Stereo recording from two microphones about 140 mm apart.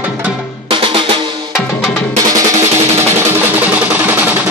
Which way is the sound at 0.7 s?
40° right (ahead or behind).